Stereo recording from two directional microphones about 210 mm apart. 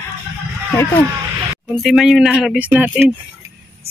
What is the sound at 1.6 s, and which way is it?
Speech, centre (ahead or behind).